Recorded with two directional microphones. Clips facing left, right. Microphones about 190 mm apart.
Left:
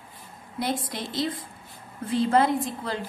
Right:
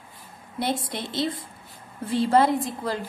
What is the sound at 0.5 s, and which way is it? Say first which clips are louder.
Speech: right 1 dB; 25° right (ahead or behind).